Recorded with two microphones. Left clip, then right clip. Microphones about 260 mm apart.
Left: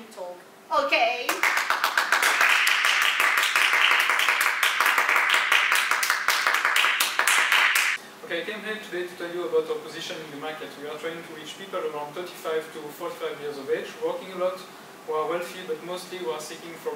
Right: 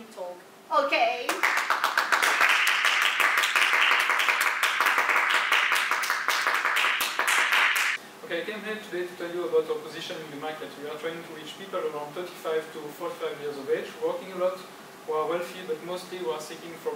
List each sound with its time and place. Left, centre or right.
0.7 s clapping: centre
9.4 s a man's voice: right
9.9 s speech: centre
12.4 s speech: centre